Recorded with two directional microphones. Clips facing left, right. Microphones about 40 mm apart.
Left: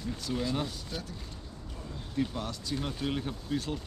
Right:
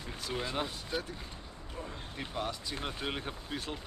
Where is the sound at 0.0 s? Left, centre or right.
Right.